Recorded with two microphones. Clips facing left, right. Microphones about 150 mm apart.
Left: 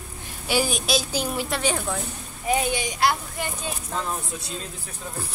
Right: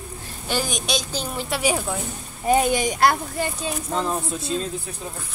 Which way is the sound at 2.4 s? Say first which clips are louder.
Right 5 dB; 45° right (ahead or behind).